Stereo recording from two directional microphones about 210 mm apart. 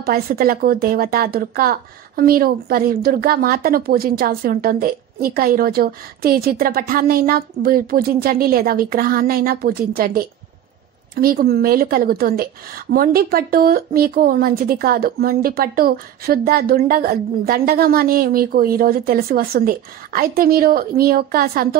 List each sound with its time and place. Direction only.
0.0 s a woman's voice: 45° right (ahead or behind)